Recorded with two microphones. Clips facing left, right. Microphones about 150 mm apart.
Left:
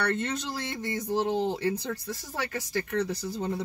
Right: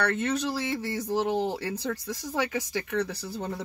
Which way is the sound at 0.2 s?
5° right (ahead or behind).